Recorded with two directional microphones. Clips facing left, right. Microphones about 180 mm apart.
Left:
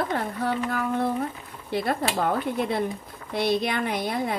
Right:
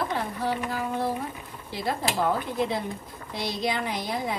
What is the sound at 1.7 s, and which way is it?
Speech, 60° left (ahead or behind).